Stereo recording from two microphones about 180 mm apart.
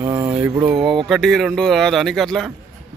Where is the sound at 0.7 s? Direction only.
Centre (ahead or behind).